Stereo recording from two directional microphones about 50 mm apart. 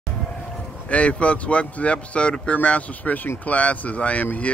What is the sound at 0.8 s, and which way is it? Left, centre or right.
Speech, left.